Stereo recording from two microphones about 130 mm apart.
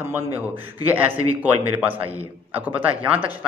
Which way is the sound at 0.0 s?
15° right (ahead or behind).